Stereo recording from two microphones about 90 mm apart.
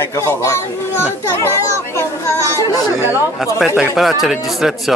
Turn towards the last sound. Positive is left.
turn(degrees=-5)  # may be behind; listen again after turning